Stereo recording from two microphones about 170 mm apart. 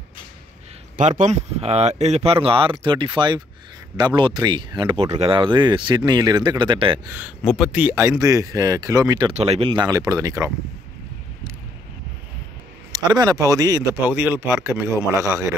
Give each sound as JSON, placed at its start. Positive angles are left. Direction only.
{"t": 0.9, "sound": "speech", "side_deg": -45}
{"t": 7.1, "sound": "speech", "side_deg": -10}
{"t": 9.3, "sound": "speech", "side_deg": -35}
{"t": 12.9, "sound": "speech", "side_deg": -25}